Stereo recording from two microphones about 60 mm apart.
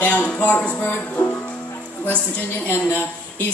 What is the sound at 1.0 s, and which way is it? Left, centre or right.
Speech, left.